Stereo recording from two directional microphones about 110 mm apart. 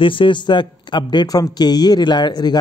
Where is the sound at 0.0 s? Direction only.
50° left (ahead or behind).